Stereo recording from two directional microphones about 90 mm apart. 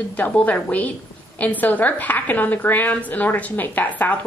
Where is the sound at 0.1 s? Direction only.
15° left (ahead or behind).